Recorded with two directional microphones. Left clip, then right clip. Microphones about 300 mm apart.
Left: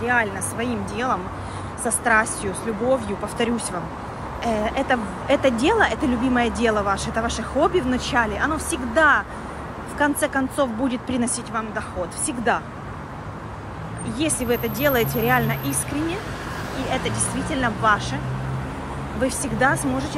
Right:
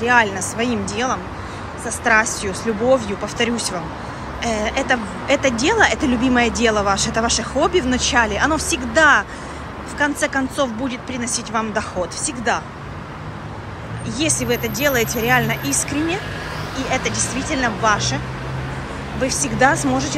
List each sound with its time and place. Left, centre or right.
0.0 s a woman's voice: centre
14.1 s a woman's voice: centre
19.2 s a woman's voice: centre